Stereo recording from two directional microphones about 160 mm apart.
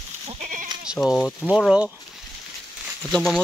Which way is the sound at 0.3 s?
50° right (ahead or behind).